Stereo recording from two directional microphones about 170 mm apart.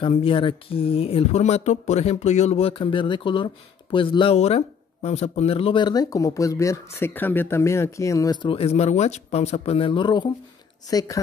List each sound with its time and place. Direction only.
0.0 s speech: 30° left (ahead or behind)